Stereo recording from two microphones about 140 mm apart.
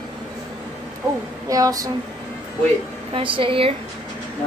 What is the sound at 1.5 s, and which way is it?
Speech, 25° right (ahead or behind).